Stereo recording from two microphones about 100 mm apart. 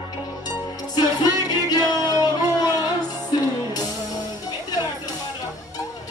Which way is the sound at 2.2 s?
45° left (ahead or behind).